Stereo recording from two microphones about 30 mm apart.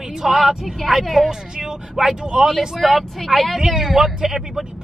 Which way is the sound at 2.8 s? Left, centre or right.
Centre.